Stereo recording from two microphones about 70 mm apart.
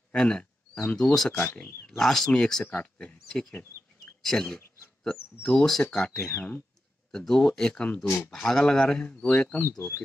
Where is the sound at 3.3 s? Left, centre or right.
Centre.